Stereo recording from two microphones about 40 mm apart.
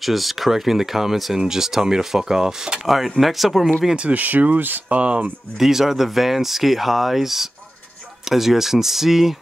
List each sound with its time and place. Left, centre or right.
0.0 s speech: centre
2.9 s speech: centre
4.1 s speech: right
4.9 s speech: right
5.6 s speech: centre